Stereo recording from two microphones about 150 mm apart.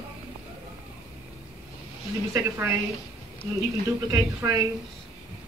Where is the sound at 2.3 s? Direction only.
20° right (ahead or behind).